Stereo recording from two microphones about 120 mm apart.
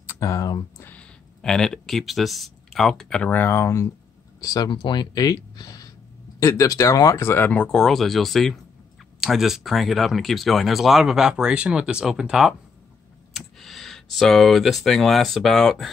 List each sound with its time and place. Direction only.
0.0 s speech: 25° left (ahead or behind)
0.8 s speech: 10° left (ahead or behind)